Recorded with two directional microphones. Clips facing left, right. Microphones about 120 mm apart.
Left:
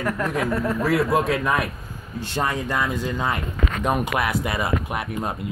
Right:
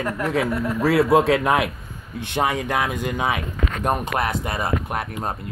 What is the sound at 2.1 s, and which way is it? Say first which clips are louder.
Speech: right 2 dB; 60° right (ahead or behind).